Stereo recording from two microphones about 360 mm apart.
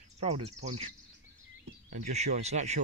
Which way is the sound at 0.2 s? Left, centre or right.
Centre.